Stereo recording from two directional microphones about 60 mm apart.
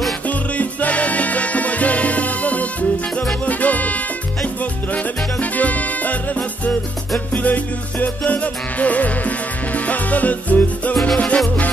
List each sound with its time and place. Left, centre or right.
0.6 s music: left
4.9 s music: left
7.3 s music: left